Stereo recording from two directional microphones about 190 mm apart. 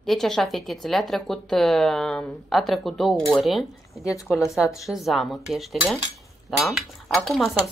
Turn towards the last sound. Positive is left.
turn(degrees=0)  # may be behind; listen again after turning